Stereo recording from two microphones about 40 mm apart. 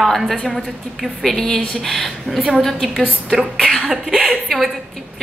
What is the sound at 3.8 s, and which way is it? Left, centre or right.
Cough, centre.